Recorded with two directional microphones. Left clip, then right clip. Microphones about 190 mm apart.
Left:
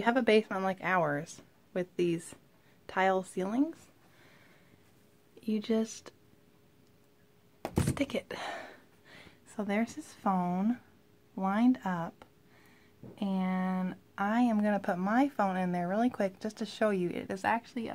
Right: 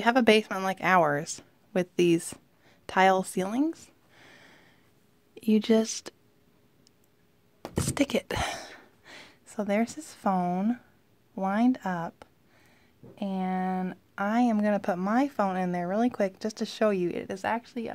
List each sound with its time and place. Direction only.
0.0 s speech: 50° right (ahead or behind)
7.6 s a sound: centre (ahead or behind)
7.9 s speech: 50° right (ahead or behind); by 17.9 s 30° right (ahead or behind)